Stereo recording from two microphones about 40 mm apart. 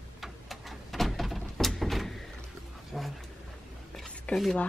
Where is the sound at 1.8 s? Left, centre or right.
Centre.